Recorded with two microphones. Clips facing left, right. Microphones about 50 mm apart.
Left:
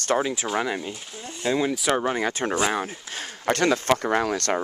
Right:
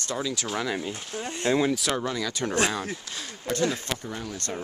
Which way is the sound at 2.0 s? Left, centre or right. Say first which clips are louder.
Left 4 dB; left.